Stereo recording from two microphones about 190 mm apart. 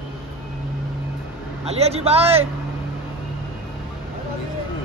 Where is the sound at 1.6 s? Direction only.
35° right (ahead or behind).